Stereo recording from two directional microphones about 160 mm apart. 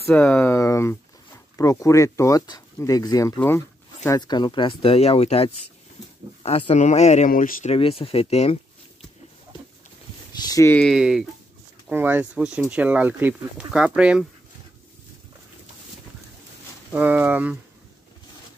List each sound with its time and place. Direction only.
0.1 s speech: 10° left (ahead or behind)
4.1 s speech: 25° left (ahead or behind); by 7.7 s 60° left (ahead or behind)
7.7 s speech: 35° left (ahead or behind)
10.3 s speech: 25° left (ahead or behind)
10.8 s speech: centre (ahead or behind)
16.9 s speech: 10° right (ahead or behind)